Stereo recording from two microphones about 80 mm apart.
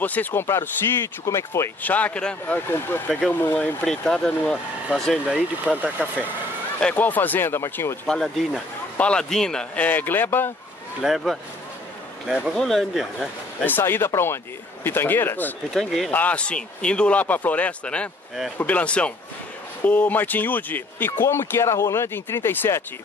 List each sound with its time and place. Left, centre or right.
0.0 s speech: left
1.8 s speech: centre
2.7 s speech: left
3.8 s speech: centre
5.3 s speech: centre
6.8 s speech: centre
8.1 s speech: centre
9.8 s speech: left
11.0 s speech: centre
12.5 s speech: centre
13.7 s speech: left
15.7 s speech: centre
16.1 s speech: left